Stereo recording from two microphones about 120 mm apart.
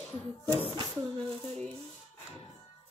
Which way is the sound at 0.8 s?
50° right (ahead or behind).